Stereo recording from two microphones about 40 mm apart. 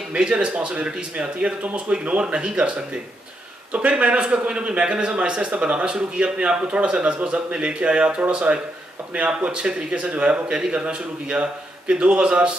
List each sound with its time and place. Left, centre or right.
0.1 s speech: right
9.5 s speech: right